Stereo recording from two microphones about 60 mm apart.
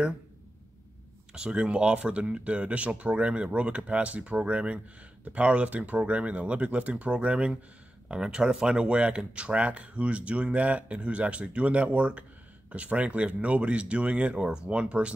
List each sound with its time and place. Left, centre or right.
1.3 s speech: centre